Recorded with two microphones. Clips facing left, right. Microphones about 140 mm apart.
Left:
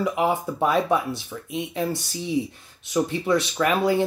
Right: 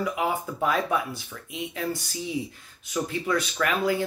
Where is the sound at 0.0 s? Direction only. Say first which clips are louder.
Left 4 dB; 25° left (ahead or behind).